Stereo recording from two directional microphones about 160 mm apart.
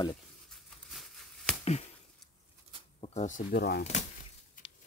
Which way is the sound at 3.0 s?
50° left (ahead or behind).